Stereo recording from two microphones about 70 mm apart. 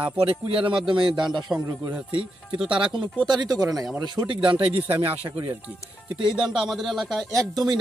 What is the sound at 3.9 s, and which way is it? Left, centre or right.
Speech, right.